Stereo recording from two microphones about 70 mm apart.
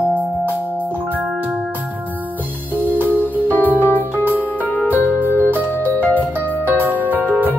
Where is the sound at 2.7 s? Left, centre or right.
Right.